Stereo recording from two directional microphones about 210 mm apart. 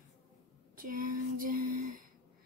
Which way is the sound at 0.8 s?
40° right (ahead or behind).